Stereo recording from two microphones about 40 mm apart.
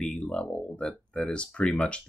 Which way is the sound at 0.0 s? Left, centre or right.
Left.